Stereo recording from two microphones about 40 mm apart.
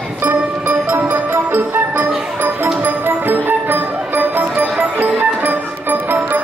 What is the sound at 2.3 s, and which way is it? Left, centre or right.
Music, right.